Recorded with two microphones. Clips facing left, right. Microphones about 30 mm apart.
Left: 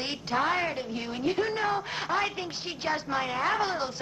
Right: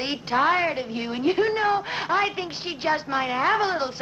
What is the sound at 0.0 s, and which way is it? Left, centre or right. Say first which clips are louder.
A woman's voice: right 6 dB; right.